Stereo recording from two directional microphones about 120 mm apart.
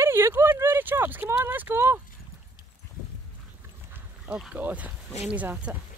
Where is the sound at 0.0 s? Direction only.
20° right (ahead or behind).